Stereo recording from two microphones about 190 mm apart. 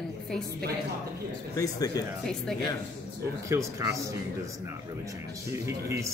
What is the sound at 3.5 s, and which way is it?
Speech, 15° right (ahead or behind).